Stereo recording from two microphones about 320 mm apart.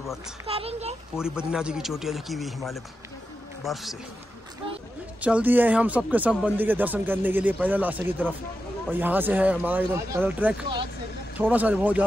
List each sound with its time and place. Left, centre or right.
0.5 s a child's voice: centre
1.1 s a man's voice: centre
5.2 s a man's voice: centre